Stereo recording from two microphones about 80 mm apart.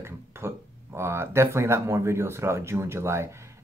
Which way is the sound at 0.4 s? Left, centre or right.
Right.